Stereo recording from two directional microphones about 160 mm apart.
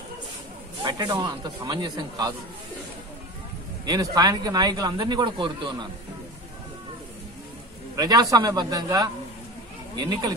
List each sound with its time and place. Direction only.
0.8 s speech: 25° right (ahead or behind)
3.8 s speech: 25° right (ahead or behind)
7.9 s speech: 25° right (ahead or behind)